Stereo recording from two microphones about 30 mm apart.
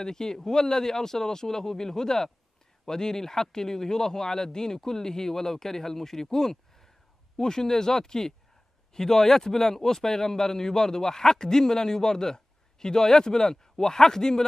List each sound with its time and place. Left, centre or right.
0.0 s speech: centre
7.3 s speech: left